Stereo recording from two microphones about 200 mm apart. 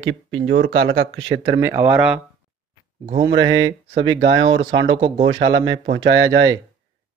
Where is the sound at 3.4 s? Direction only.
20° right (ahead or behind).